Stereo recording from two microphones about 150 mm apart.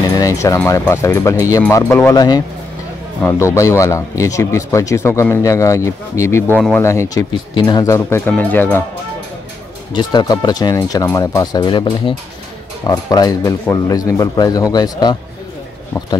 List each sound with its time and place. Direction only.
0.0 s speech: 20° left (ahead or behind)
9.9 s speech: 30° left (ahead or behind)